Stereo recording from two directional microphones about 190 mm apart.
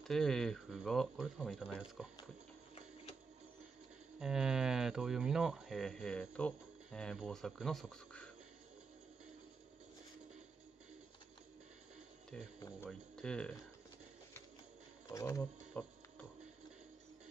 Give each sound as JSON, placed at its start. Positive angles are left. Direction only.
{"t": 0.0, "sound": "speech", "side_deg": 0}
{"t": 4.2, "sound": "speech", "side_deg": -5}
{"t": 12.5, "sound": "speech", "side_deg": 15}
{"t": 13.1, "sound": "speech", "side_deg": 5}
{"t": 15.1, "sound": "speech", "side_deg": 15}